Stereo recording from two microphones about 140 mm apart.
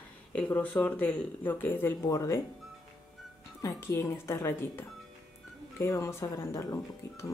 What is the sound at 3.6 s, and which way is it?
Speech, 20° left (ahead or behind).